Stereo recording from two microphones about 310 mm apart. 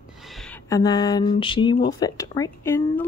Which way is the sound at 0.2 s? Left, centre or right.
Centre.